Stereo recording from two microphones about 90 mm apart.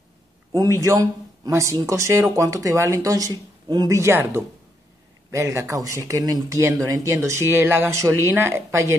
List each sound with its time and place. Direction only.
0.6 s speech: 35° right (ahead or behind)
3.9 s speech: 30° right (ahead or behind)